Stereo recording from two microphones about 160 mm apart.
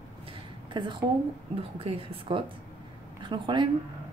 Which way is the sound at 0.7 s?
30° right (ahead or behind).